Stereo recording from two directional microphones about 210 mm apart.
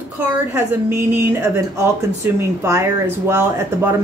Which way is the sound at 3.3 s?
10° right (ahead or behind).